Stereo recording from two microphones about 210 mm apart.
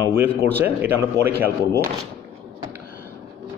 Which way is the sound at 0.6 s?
10° right (ahead or behind).